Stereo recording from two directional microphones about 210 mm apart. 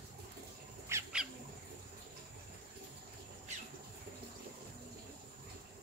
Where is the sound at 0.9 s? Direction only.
10° right (ahead or behind).